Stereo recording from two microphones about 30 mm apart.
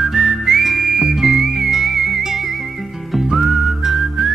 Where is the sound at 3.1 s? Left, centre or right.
Centre.